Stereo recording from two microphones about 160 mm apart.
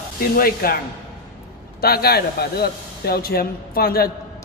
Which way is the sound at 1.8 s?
75° left (ahead or behind).